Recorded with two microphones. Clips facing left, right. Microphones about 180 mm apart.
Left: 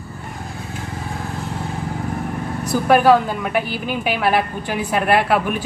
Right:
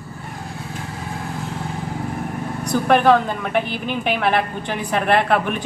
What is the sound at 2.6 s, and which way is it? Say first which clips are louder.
A woman's voice: left 1 dB; 5° left (ahead or behind).